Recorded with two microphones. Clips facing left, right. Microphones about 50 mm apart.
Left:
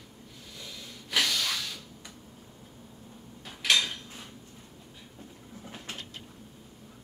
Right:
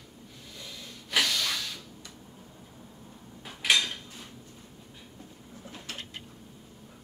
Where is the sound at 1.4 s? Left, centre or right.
Centre.